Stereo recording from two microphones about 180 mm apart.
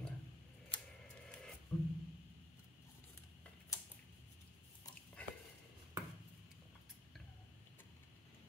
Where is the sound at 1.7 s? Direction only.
5° left (ahead or behind).